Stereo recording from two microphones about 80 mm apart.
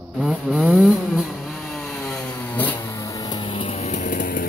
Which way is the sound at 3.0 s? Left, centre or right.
Left.